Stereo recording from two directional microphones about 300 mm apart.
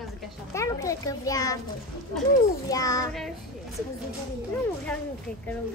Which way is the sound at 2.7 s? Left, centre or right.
Centre.